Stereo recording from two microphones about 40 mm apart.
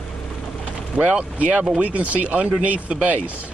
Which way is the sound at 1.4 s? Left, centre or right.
Right.